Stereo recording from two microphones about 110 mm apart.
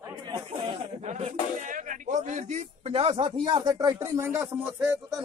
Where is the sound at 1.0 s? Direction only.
90° right.